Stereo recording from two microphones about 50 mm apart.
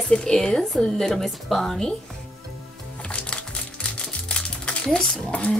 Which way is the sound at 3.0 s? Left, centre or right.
Left.